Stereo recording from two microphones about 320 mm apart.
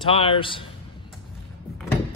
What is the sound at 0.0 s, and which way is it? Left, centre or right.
Speech, centre.